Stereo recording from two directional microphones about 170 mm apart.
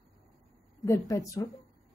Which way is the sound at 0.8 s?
20° left (ahead or behind).